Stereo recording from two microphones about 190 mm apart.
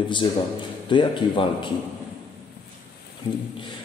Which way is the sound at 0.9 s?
25° left (ahead or behind).